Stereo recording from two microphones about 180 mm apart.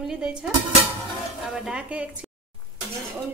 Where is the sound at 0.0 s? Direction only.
5° right (ahead or behind).